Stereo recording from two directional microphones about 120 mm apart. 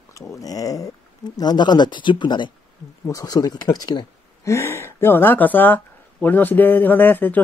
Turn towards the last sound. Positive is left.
turn(degrees=15)  # may be behind; listen again after turning